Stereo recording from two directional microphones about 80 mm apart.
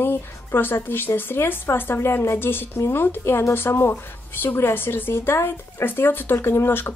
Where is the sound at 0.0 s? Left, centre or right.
Left.